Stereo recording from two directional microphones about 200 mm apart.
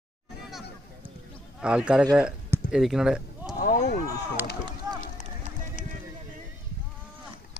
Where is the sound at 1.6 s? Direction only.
5° right (ahead or behind).